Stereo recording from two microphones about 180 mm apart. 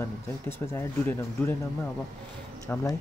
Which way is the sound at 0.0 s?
15° left (ahead or behind).